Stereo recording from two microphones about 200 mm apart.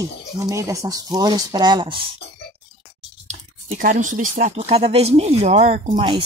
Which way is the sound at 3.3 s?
40° right (ahead or behind).